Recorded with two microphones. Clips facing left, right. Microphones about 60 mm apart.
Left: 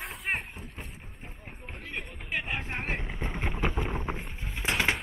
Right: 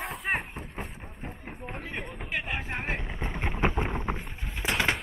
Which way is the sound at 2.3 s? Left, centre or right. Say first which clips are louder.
Even; centre.